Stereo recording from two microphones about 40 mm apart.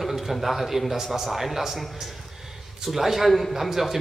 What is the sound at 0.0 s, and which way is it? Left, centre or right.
A man's voice, centre.